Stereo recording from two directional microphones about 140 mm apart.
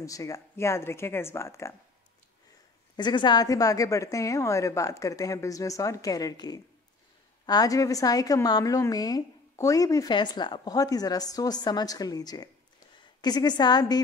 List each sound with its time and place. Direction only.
0.0 s a woman's voice: 25° left (ahead or behind)
3.0 s a woman's voice: 30° left (ahead or behind)